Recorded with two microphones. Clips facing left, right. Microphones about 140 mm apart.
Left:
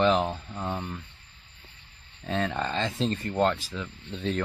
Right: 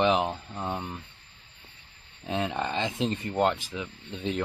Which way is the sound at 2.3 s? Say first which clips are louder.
Left 1 dB; 15° right (ahead or behind).